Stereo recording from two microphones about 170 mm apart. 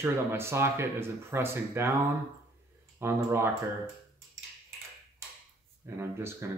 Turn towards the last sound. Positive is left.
turn(degrees=-15)  # may be behind; listen again after turning